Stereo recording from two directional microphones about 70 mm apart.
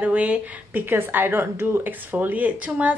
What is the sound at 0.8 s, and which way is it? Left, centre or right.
A woman's voice, right.